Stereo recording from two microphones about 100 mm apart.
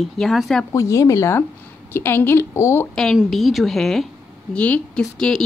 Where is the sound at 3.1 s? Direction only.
Centre (ahead or behind).